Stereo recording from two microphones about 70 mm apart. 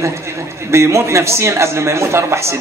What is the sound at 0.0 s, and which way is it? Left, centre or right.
A man's voice, right.